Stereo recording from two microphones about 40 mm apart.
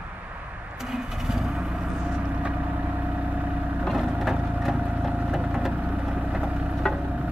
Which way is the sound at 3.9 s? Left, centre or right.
Centre.